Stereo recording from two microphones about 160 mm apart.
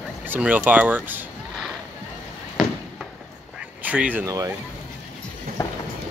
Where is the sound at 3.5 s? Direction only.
10° right (ahead or behind).